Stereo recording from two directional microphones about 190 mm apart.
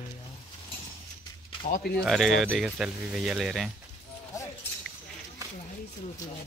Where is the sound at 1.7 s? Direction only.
55° left (ahead or behind).